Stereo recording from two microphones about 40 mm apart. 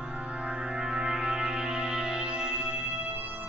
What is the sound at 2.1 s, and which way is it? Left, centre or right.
Music, right.